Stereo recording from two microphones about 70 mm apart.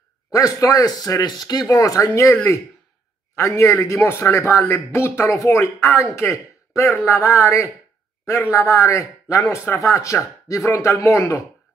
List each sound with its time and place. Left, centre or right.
0.3 s speech: left
3.3 s speech: left